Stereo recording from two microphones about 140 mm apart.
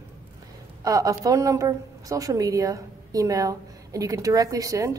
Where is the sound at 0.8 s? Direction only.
25° right (ahead or behind).